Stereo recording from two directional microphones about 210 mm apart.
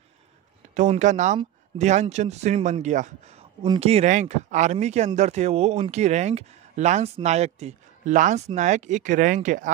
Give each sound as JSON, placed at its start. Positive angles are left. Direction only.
{"t": 0.7, "sound": "speech", "side_deg": -35}
{"t": 3.6, "sound": "speech", "side_deg": -25}